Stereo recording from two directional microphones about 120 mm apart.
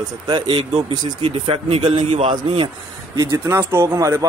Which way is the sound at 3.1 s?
25° right (ahead or behind).